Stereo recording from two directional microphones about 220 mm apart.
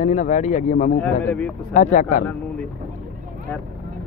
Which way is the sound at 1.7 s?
35° left (ahead or behind).